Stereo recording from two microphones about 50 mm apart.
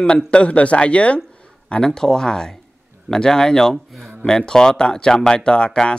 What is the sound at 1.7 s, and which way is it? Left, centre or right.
Speech, centre.